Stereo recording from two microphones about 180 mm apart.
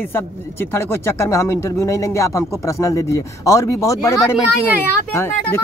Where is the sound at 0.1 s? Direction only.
15° left (ahead or behind).